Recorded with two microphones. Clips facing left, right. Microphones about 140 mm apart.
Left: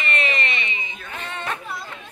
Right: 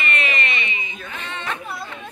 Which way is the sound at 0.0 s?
30° left (ahead or behind).